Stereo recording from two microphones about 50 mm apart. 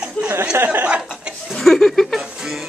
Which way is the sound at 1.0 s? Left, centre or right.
Centre.